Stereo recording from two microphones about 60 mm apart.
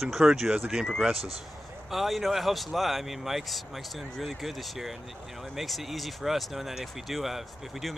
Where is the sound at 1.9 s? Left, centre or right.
Centre.